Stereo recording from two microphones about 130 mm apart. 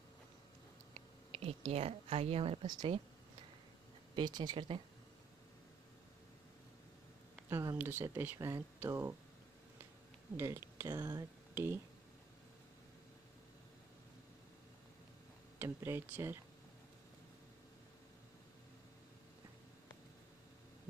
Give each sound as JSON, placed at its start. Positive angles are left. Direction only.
{"t": 0.9, "sound": "speech", "side_deg": -50}
{"t": 2.6, "sound": "speech", "side_deg": -30}
{"t": 4.1, "sound": "speech", "side_deg": -35}
{"t": 7.4, "sound": "speech", "side_deg": -20}
{"t": 10.3, "sound": "speech", "side_deg": -20}
{"t": 15.6, "sound": "speech", "side_deg": -20}